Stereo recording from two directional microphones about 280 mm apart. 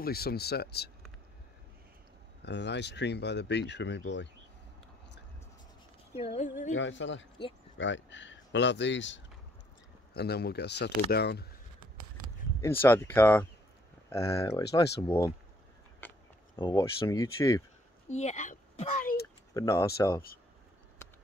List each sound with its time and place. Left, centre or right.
0.0 s speech: left
2.4 s speech: left
6.1 s speech: left
6.7 s speech: left
12.5 s speech: centre
16.0 s a sound: centre
16.5 s speech: centre
18.1 s speech: left
19.5 s speech: centre